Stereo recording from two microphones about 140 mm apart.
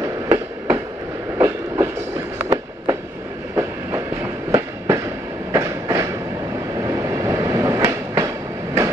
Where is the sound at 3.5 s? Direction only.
20° right (ahead or behind).